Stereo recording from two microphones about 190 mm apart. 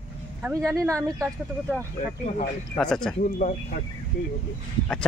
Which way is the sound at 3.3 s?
40° left (ahead or behind).